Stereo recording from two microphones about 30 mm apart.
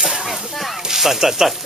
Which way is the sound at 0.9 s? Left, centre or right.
Centre.